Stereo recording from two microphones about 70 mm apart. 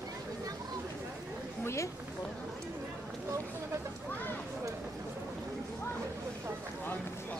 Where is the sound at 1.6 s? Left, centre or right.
Left.